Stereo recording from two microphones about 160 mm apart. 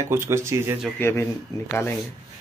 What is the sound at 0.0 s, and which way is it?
Speech, 15° right (ahead or behind).